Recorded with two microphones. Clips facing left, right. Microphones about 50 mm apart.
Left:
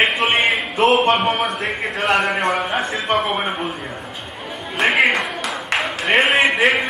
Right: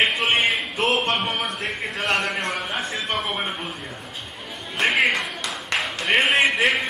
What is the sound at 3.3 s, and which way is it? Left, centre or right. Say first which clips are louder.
Speech: left 5 dB; left.